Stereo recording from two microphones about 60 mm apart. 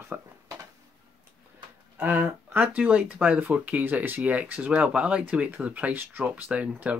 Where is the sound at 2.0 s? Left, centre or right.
Right.